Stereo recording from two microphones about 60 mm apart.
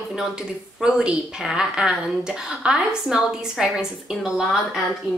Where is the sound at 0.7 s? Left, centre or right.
Centre.